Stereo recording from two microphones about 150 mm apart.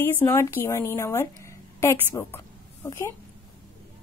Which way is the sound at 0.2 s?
15° left (ahead or behind).